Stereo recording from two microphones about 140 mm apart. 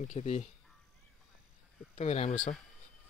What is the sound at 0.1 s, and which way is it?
Speech, 55° left (ahead or behind).